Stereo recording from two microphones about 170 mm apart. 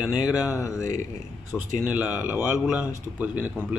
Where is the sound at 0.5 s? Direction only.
15° left (ahead or behind).